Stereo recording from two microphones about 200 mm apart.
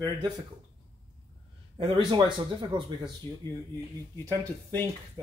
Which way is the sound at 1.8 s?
25° right (ahead or behind).